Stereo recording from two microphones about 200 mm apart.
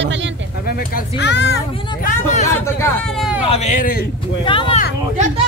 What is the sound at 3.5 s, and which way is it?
Speech, 35° left (ahead or behind).